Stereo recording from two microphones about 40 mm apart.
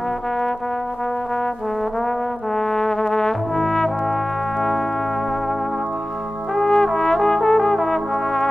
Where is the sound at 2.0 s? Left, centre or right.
Centre.